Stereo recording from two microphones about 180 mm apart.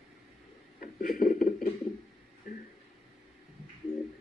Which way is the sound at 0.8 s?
50° left (ahead or behind).